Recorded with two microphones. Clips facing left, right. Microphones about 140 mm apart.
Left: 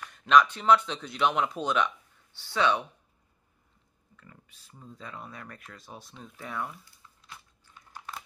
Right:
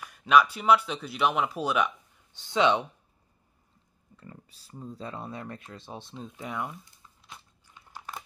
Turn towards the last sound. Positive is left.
turn(degrees=-20)  # may be behind; listen again after turning